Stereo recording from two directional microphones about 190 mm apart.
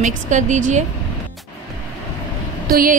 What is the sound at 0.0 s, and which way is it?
Speech, 40° right (ahead or behind).